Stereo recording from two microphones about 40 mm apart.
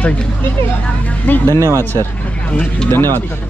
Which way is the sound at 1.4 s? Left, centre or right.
Left.